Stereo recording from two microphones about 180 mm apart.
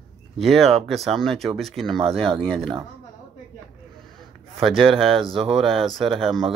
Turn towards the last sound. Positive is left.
turn(degrees=0)  # may be behind; listen again after turning